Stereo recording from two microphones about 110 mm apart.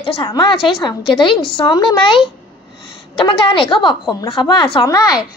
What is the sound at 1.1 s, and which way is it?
A woman's voice, 50° left (ahead or behind).